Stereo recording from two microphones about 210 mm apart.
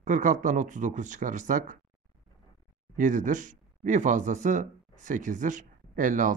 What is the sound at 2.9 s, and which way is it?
Speech, 35° right (ahead or behind).